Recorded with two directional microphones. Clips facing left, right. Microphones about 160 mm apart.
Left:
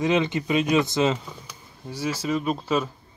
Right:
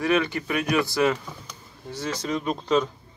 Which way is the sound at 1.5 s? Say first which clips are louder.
Even; 10° left (ahead or behind).